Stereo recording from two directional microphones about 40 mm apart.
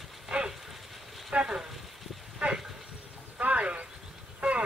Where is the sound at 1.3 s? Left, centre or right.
Right.